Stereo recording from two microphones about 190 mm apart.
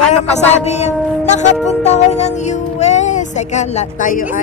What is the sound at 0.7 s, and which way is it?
Music, 35° left (ahead or behind).